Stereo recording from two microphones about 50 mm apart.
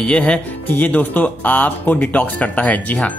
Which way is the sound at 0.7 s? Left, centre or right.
Left.